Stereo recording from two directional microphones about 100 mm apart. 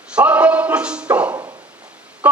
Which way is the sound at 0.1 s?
15° right (ahead or behind).